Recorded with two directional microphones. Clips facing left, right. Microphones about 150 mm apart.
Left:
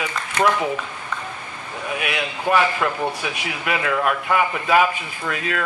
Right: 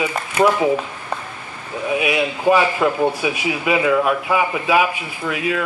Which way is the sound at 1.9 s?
10° right (ahead or behind).